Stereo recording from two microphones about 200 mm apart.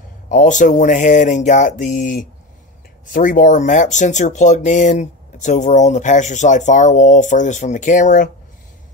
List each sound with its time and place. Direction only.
0.3 s speech: 40° left (ahead or behind)